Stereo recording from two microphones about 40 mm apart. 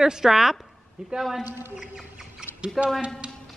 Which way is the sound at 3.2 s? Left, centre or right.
Right.